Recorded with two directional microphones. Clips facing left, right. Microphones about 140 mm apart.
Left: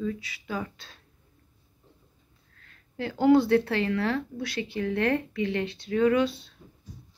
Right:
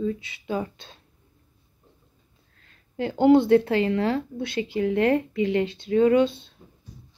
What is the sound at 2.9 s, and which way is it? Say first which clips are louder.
Speech: right 3 dB; 20° right (ahead or behind).